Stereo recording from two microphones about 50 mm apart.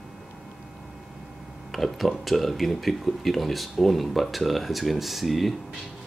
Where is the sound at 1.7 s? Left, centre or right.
Centre.